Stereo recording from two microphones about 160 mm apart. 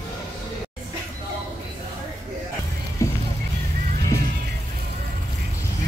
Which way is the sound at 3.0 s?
20° left (ahead or behind).